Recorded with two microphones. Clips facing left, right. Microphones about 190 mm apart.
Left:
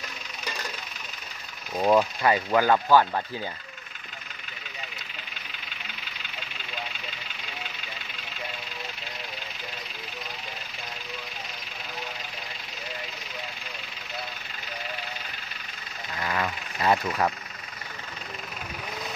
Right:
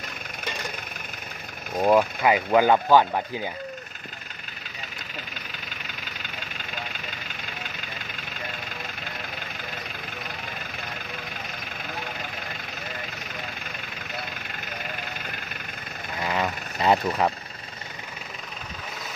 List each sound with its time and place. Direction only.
1.8 s speech: 10° right (ahead or behind)
16.3 s vehicle: 20° right (ahead or behind)